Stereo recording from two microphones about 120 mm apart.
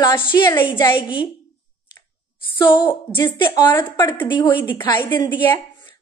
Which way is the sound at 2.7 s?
40° left (ahead or behind).